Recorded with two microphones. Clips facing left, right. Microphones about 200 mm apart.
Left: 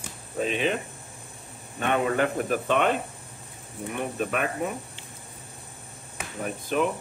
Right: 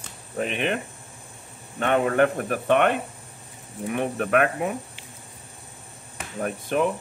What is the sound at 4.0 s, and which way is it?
Speech, 65° right (ahead or behind).